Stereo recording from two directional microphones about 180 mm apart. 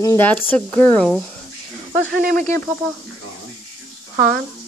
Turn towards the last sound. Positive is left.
turn(degrees=-60)  # may be behind; listen again after turning